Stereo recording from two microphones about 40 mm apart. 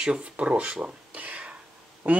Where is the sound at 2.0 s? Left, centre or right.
Right.